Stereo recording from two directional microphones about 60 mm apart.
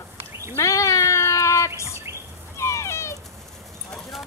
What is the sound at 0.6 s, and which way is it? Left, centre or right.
Cat, left.